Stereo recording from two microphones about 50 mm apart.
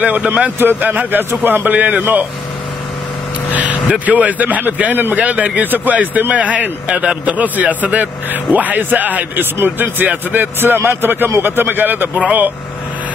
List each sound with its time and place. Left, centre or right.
0.0 s speech: right
0.6 s speech: right
4.0 s speech: right